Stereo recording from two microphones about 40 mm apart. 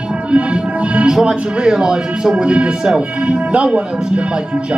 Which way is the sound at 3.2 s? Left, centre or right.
Right.